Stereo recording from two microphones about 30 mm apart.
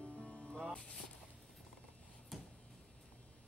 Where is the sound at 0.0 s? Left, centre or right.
Left.